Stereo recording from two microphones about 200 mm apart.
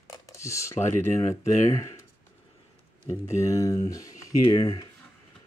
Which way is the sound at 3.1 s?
15° left (ahead or behind).